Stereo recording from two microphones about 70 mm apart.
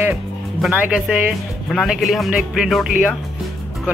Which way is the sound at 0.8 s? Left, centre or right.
Centre.